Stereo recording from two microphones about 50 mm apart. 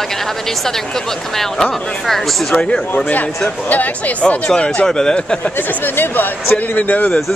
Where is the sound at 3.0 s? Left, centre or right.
Left.